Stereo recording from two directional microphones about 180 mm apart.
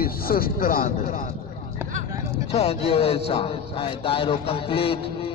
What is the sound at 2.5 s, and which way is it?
A man's voice, 35° left (ahead or behind).